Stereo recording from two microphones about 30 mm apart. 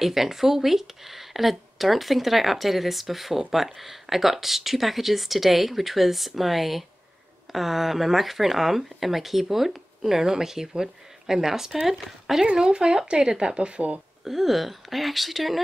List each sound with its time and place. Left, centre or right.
0.0 s speech: centre
12.5 s speech: right
14.2 s speech: centre